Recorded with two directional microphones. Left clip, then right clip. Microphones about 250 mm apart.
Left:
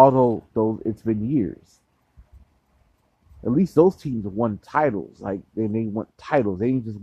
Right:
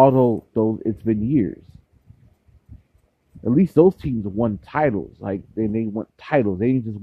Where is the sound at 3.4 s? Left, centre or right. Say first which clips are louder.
Right 2 dB; centre.